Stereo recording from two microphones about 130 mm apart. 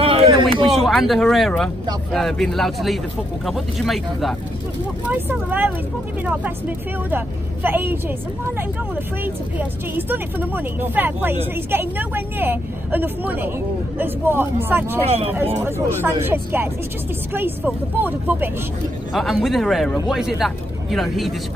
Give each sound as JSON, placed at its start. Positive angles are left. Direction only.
{"t": 0.0, "sound": "a sound", "side_deg": -45}
{"t": 0.7, "sound": "speech", "side_deg": 0}
{"t": 5.1, "sound": "speech", "side_deg": -15}
{"t": 7.1, "sound": "speech", "side_deg": -15}
{"t": 15.0, "sound": "speech", "side_deg": -55}
{"t": 15.6, "sound": "speech", "side_deg": -15}
{"t": 19.1, "sound": "speech", "side_deg": 0}